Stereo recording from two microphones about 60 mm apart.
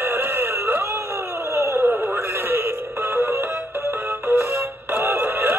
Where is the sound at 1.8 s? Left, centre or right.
Right.